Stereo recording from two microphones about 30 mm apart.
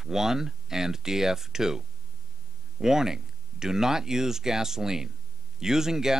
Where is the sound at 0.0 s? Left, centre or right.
Centre.